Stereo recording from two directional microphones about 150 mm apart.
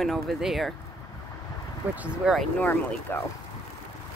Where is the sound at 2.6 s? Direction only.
15° left (ahead or behind).